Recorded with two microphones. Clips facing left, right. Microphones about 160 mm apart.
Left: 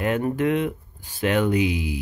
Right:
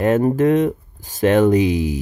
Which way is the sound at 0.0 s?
35° right (ahead or behind).